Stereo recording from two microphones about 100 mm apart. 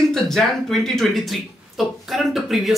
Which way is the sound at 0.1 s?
5° left (ahead or behind).